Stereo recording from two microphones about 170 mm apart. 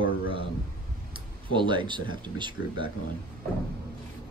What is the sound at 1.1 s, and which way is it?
Speech, 30° right (ahead or behind).